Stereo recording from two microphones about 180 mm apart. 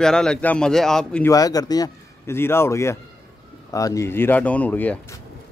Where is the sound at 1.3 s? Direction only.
20° left (ahead or behind).